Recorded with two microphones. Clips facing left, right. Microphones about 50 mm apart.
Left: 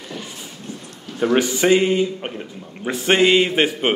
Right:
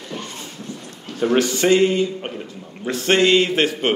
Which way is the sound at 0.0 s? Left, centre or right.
Centre.